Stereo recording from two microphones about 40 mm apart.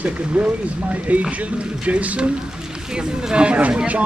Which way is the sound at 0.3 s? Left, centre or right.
Right.